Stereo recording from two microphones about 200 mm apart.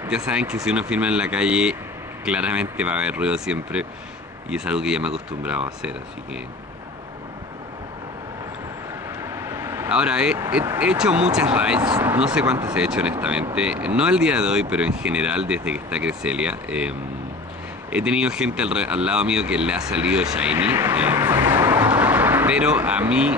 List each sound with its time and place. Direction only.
0.0 s speech: 10° right (ahead or behind)
9.2 s vehicle: 15° right (ahead or behind)
10.8 s speech: 5° right (ahead or behind)
17.9 s speech: 5° right (ahead or behind)